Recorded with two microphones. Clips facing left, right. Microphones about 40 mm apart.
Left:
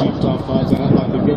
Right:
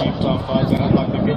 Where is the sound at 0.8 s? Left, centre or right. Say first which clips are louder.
Left 2 dB; centre.